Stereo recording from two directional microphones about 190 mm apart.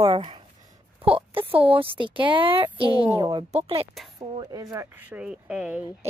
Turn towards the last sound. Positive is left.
turn(degrees=-5)  # may be behind; listen again after turning